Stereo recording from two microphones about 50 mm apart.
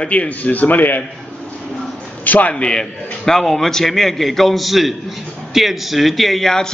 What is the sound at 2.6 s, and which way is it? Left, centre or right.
A man's voice, centre.